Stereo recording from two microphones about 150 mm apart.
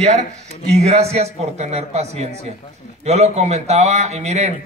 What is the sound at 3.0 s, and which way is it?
Speech, 45° right (ahead or behind).